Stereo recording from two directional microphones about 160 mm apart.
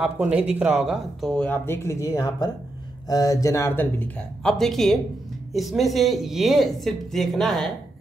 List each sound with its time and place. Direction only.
0.0 s speech: 10° right (ahead or behind)
0.8 s speech: 5° left (ahead or behind)